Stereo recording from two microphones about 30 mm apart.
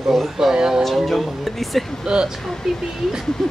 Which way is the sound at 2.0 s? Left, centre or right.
Right.